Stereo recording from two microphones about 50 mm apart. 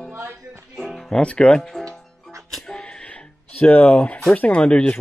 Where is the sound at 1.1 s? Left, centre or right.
Centre.